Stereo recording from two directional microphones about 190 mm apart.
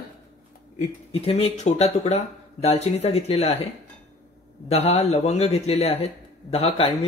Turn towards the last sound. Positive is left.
turn(degrees=30)  # may be behind; listen again after turning